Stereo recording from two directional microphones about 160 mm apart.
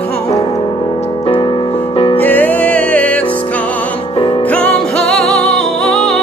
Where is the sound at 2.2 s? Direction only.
10° left (ahead or behind).